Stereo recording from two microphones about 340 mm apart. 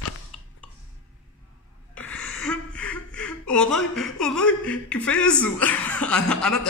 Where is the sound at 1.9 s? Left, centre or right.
Centre.